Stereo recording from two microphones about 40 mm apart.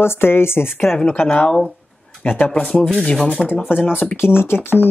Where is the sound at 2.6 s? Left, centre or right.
Left.